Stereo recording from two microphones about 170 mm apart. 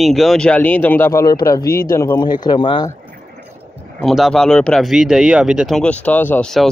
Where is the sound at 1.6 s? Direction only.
60° left (ahead or behind).